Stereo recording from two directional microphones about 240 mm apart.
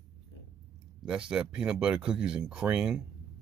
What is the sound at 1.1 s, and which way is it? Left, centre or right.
Speech, centre.